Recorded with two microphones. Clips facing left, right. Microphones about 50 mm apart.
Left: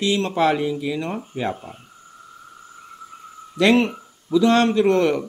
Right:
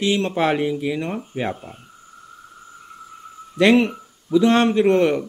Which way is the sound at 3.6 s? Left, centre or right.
Right.